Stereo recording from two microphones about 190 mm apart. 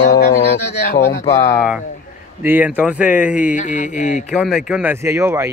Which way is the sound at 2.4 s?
10° right (ahead or behind).